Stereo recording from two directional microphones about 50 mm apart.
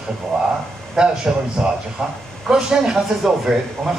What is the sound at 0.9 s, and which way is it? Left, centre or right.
Speech, centre.